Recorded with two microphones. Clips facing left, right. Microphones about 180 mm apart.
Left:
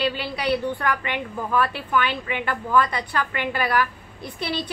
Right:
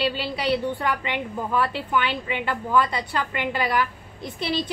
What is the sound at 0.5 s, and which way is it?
A woman's voice, 20° right (ahead or behind).